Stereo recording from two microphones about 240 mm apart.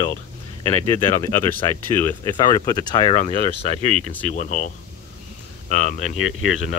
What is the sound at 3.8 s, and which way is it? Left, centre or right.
Speech, right.